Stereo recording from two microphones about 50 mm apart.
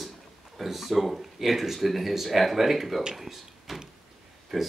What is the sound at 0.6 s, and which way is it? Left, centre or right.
Speech, centre.